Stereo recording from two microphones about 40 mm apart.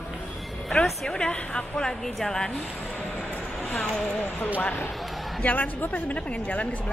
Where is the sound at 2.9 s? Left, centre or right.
Left.